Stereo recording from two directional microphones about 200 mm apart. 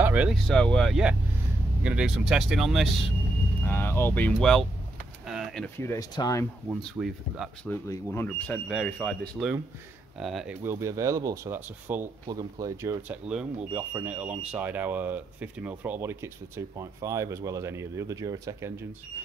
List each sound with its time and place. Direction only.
0.0 s speech: 5° right (ahead or behind)
3.6 s speech: 10° left (ahead or behind)
6.7 s speech: 5° right (ahead or behind)
7.7 s speech: 15° left (ahead or behind); by 12.9 s 15° right (ahead or behind)
13.1 s speech: 5° right (ahead or behind)